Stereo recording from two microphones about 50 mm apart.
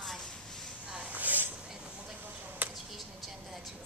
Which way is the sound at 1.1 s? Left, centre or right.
Right.